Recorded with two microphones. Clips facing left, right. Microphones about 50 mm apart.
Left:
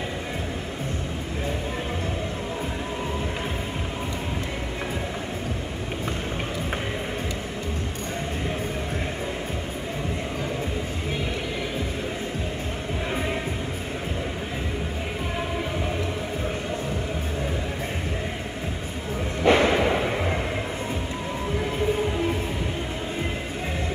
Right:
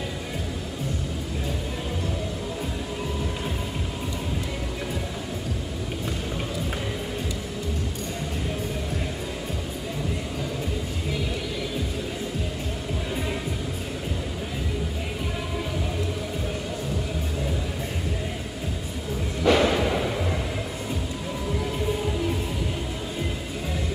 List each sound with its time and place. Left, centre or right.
19.4 s whip: left